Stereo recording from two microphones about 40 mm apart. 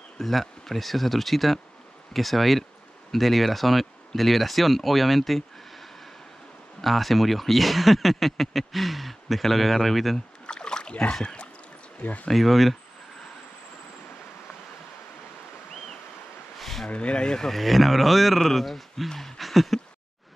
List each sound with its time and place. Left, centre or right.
0.2 s speech: centre
10.4 s rowboat: left
12.0 s speech: left
12.3 s speech: centre
16.5 s a sound: centre
16.9 s speech: left
17.5 s speech: centre